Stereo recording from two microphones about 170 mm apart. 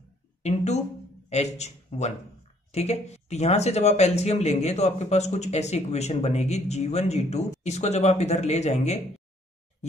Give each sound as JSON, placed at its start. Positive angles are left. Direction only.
{"t": 0.4, "sound": "speech", "side_deg": 40}